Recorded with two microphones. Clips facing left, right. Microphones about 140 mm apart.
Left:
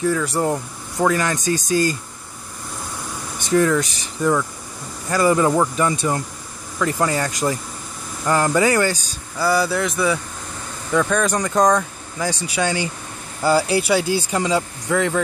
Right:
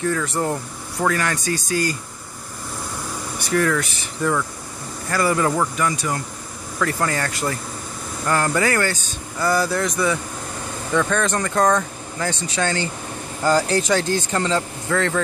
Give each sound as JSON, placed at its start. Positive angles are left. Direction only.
{"t": 0.0, "sound": "speech", "side_deg": 10}
{"t": 3.3, "sound": "speech", "side_deg": 20}
{"t": 6.8, "sound": "speech", "side_deg": 15}